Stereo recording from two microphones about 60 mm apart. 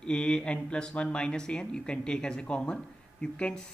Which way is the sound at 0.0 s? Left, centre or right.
Centre.